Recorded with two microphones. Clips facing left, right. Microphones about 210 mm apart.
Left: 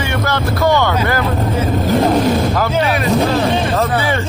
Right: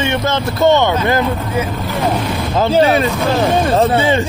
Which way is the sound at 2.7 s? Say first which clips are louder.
Right 3 dB; 30° right (ahead or behind).